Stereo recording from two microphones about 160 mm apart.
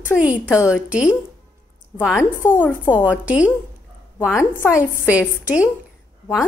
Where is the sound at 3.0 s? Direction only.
10° right (ahead or behind).